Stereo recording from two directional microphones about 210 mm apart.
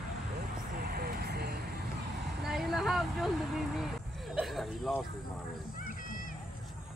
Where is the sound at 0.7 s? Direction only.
45° right (ahead or behind).